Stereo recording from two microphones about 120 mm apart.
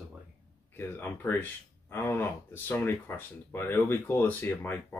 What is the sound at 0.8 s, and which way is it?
Speech, 20° left (ahead or behind).